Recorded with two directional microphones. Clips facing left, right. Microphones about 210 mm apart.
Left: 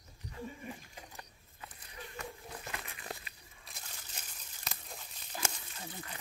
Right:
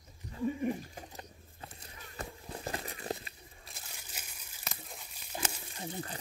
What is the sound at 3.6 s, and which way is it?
Crumpling, 5° right (ahead or behind).